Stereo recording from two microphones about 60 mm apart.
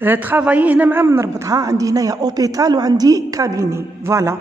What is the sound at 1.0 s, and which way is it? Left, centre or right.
Speech, right.